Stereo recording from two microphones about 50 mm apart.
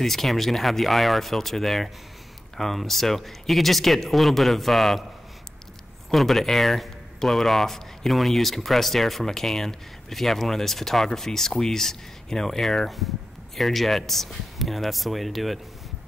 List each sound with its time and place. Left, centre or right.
0.0 s speech: centre
6.0 s speech: centre